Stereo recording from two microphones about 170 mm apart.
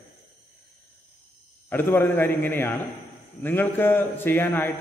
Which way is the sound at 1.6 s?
10° left (ahead or behind).